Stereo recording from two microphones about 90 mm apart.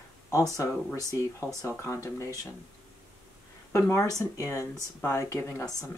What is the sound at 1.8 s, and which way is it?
Speech, 35° left (ahead or behind).